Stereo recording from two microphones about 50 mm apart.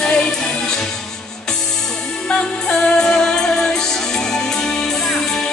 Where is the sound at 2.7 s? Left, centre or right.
Centre.